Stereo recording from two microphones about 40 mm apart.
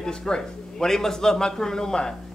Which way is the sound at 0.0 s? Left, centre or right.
Centre.